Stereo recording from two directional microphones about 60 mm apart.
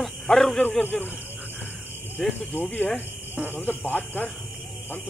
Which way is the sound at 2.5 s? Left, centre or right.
Left.